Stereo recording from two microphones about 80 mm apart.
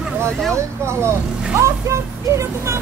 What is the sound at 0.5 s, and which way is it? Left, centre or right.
Speech, right.